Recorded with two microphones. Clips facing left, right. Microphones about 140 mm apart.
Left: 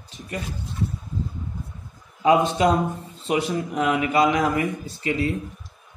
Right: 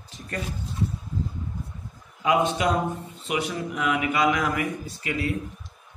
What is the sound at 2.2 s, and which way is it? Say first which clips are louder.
Speech: left 4 dB; 30° left (ahead or behind).